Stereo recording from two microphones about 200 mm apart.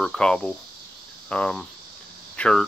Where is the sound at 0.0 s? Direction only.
5° left (ahead or behind).